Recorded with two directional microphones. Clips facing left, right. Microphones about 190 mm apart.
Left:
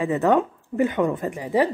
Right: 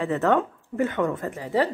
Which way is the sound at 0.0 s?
15° left (ahead or behind).